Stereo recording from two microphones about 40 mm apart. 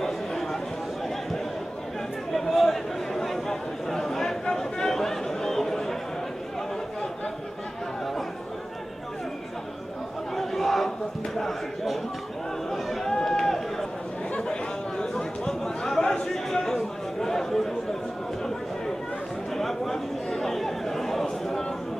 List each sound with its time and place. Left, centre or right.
0.0 s a sound: centre
2.3 s chatter: centre
10.3 s crowd: centre
12.7 s run: centre
14.5 s chatter: centre
19.5 s chatter: centre